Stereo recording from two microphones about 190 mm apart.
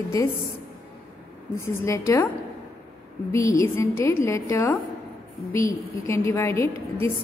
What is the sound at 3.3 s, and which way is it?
A woman's voice, 15° left (ahead or behind).